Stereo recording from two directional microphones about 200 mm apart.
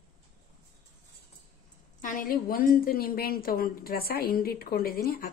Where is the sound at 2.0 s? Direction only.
45° left (ahead or behind).